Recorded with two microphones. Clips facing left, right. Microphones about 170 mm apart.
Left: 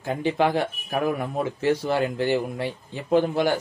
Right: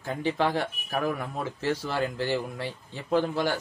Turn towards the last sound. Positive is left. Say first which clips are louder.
# left 5 dB
turn(degrees=20)  # may be behind; listen again after turning